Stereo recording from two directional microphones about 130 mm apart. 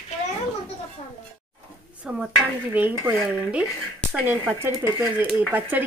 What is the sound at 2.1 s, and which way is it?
Speech, 15° right (ahead or behind).